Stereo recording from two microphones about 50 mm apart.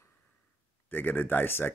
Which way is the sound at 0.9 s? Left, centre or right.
Left.